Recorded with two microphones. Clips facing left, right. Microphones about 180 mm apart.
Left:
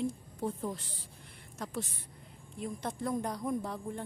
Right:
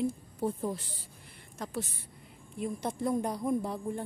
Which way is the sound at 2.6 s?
10° right (ahead or behind).